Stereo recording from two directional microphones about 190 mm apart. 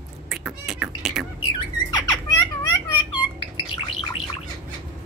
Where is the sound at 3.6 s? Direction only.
25° left (ahead or behind).